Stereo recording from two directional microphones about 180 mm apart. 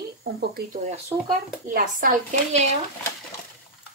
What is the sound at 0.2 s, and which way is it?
Speech, 60° right (ahead or behind).